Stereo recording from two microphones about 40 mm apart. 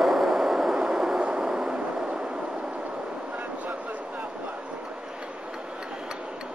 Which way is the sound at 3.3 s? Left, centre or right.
Right.